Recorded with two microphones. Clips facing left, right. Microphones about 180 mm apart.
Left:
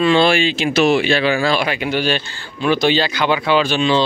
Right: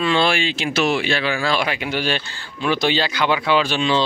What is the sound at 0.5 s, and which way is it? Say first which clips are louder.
Speech: left 5 dB; 15° left (ahead or behind).